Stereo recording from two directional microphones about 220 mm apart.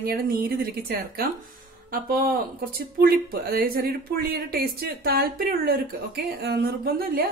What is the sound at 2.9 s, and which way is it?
A woman's voice, 45° right (ahead or behind).